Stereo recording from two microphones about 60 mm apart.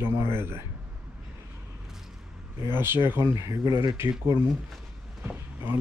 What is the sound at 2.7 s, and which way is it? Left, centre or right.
Speech, right.